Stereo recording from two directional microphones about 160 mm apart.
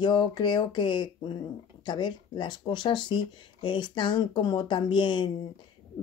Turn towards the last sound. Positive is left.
turn(degrees=30)  # may be behind; listen again after turning